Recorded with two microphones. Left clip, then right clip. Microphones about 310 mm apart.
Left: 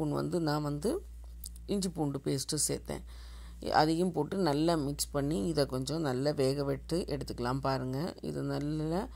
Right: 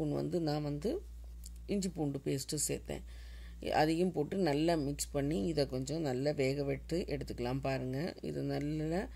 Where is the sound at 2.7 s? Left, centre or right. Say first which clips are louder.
Left 3 dB; left.